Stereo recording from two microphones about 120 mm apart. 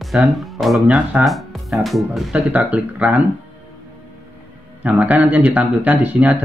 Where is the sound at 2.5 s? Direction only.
15° right (ahead or behind).